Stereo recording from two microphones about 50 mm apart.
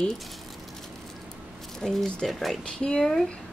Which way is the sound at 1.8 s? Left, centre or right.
Centre.